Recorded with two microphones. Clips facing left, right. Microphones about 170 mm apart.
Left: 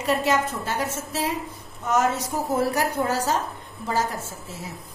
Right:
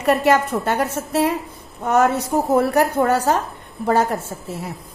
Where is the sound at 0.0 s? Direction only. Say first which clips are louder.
Right 6 dB; 60° right (ahead or behind).